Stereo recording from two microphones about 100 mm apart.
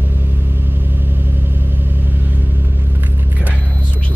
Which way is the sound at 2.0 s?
20° right (ahead or behind).